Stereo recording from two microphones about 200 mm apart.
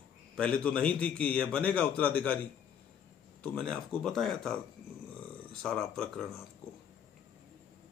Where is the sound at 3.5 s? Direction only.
5° left (ahead or behind).